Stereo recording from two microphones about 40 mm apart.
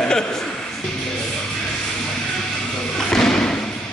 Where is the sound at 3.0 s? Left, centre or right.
Centre.